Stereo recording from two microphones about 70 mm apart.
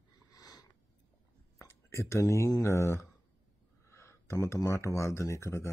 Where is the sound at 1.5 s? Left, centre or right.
Left.